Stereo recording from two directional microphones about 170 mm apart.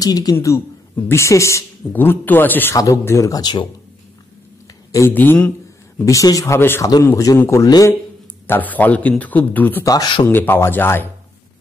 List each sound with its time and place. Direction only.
0.0 s a man's voice: 20° left (ahead or behind)
4.9 s a man's voice: 15° left (ahead or behind)
10.2 s speech: 10° left (ahead or behind)